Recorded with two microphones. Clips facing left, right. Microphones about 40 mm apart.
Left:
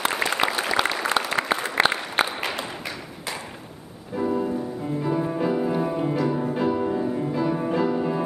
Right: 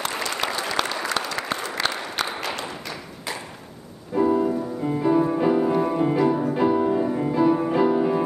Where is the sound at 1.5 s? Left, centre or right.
Left.